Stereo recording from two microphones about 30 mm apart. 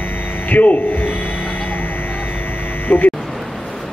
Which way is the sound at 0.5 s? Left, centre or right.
Left.